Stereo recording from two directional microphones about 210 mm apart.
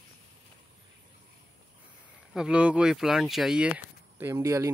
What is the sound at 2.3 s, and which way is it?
A man's voice, 5° right (ahead or behind).